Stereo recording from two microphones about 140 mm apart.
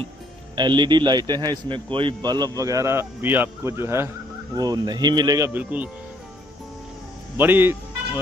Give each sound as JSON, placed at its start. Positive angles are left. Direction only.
{"t": 0.6, "sound": "a man's voice", "side_deg": -35}
{"t": 4.6, "sound": "a man's voice", "side_deg": -30}
{"t": 5.5, "sound": "speech", "side_deg": -10}
{"t": 7.3, "sound": "speech", "side_deg": -15}